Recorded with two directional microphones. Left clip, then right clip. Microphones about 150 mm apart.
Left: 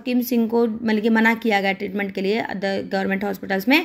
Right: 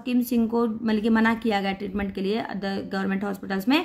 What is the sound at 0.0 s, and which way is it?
A woman's voice, 15° left (ahead or behind).